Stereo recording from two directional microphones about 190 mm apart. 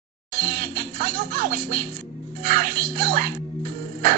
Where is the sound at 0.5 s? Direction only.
50° right (ahead or behind).